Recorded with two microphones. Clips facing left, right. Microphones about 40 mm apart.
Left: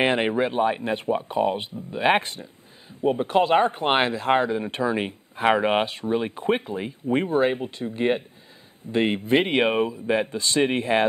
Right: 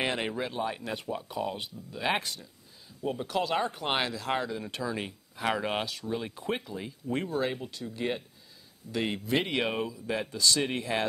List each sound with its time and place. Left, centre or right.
0.0 s speech: left